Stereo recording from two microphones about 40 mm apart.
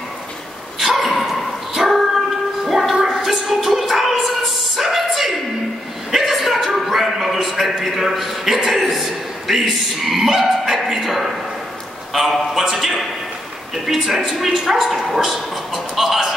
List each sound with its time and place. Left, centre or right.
0.7 s dog: centre
2.7 s a sound: centre
8.6 s a man's voice: centre